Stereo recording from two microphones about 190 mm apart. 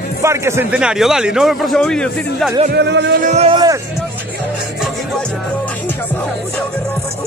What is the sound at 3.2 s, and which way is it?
Speech, 35° right (ahead or behind).